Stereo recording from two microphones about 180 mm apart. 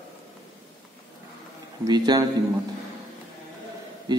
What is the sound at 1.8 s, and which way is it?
Speech, 20° right (ahead or behind).